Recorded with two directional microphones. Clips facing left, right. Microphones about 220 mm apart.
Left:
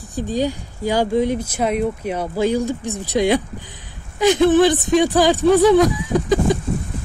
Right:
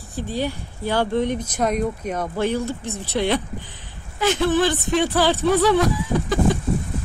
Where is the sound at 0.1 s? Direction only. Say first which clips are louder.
Left 4 dB; 15° left (ahead or behind).